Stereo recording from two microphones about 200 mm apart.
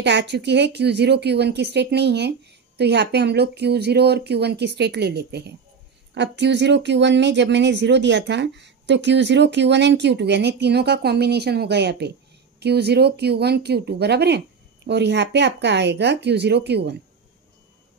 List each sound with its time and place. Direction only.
0.0 s speech: 60° right (ahead or behind)